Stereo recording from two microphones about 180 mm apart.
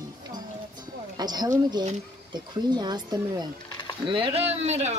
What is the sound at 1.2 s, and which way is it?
Speech, 25° right (ahead or behind).